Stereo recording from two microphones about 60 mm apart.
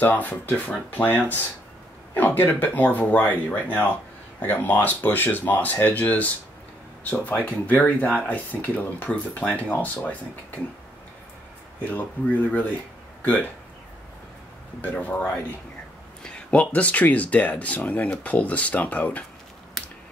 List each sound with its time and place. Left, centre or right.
0.0 s speech: left
11.9 s speech: left
14.8 s speech: left
16.2 s speech: centre
19.8 s a sound: centre